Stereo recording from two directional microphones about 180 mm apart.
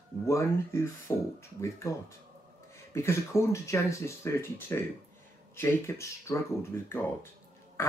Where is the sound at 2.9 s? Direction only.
15° left (ahead or behind).